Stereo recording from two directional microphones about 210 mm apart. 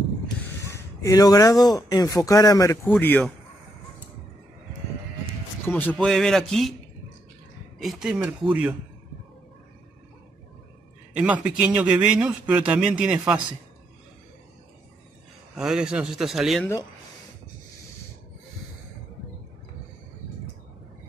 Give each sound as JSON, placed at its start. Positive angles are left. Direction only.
{"t": 0.7, "sound": "speech", "side_deg": 15}
{"t": 5.7, "sound": "a man's voice", "side_deg": 10}
{"t": 7.8, "sound": "a man's voice", "side_deg": 0}
{"t": 11.1, "sound": "a man's voice", "side_deg": -5}
{"t": 15.5, "sound": "a man's voice", "side_deg": -5}